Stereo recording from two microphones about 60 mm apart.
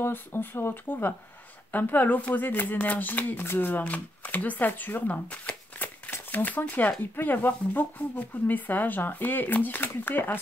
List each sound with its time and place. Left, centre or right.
0.0 s speech: left